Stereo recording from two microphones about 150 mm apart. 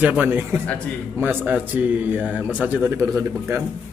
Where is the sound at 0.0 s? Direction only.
10° right (ahead or behind).